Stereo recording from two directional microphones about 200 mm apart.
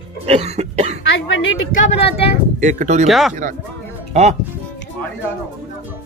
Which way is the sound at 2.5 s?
40° right (ahead or behind).